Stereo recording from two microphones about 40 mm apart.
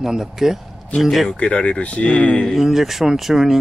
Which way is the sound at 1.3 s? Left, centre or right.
Left.